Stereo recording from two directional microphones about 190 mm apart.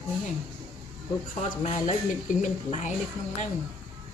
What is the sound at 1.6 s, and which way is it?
A woman's voice, 35° left (ahead or behind).